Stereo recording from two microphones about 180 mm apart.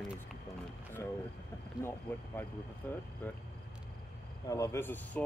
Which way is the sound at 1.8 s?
15° left (ahead or behind).